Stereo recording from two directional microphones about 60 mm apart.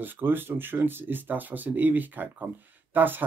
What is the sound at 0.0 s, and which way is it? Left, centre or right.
Speech, right.